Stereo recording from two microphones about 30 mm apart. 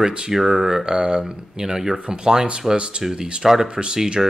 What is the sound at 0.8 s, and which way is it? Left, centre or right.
Speech, right.